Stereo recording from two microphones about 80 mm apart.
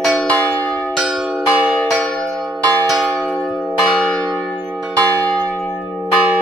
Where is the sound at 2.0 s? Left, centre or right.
Centre.